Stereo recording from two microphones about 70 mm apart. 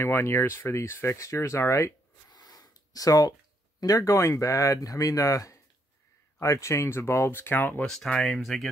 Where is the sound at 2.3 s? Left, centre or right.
Left.